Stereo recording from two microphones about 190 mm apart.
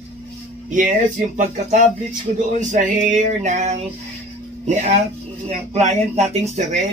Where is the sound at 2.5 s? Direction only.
40° right (ahead or behind).